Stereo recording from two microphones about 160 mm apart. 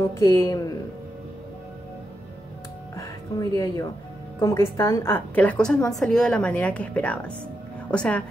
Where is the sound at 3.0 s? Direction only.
20° left (ahead or behind).